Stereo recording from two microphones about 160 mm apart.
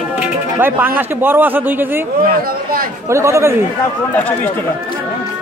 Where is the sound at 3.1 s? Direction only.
15° right (ahead or behind).